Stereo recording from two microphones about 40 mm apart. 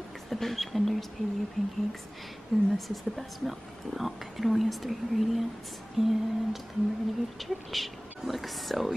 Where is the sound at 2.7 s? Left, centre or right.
Centre.